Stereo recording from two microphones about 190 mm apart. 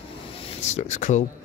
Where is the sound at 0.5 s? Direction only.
35° left (ahead or behind).